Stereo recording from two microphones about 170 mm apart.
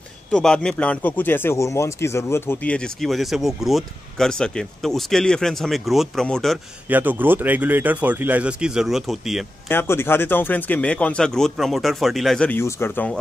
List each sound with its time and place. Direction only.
0.3 s a man's voice: 5° left (ahead or behind)
6.9 s speech: 10° right (ahead or behind)
9.7 s speech: 15° left (ahead or behind)